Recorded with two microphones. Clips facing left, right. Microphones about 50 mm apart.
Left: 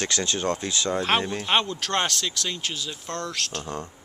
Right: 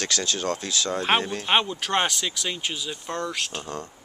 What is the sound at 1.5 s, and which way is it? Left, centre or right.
Speech, centre.